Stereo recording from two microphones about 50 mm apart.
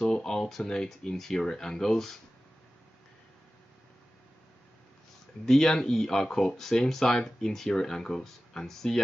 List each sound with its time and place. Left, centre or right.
0.0 s speech: centre
5.4 s speech: centre